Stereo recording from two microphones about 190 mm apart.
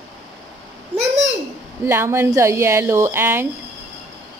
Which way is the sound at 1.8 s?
15° right (ahead or behind).